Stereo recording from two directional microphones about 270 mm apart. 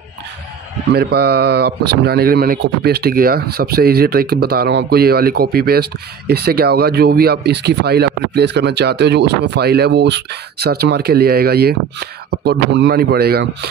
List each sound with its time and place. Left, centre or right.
0.9 s speech: right